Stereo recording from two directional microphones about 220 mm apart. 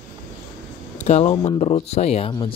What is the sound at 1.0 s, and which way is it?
Speech, 30° left (ahead or behind).